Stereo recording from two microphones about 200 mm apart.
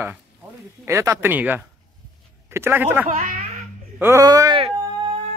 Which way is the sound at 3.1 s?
40° right (ahead or behind).